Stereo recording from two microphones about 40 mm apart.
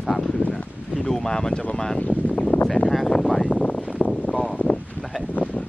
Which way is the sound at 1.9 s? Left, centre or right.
Left.